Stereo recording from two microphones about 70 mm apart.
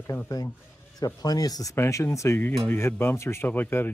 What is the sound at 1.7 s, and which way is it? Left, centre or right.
Speech, left.